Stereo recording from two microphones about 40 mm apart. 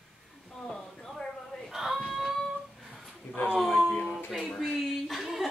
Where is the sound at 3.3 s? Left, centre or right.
Left.